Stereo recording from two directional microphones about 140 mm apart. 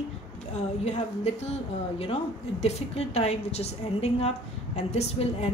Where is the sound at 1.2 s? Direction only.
50° left (ahead or behind).